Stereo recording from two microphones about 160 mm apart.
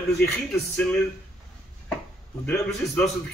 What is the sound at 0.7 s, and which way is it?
Speech, 5° left (ahead or behind).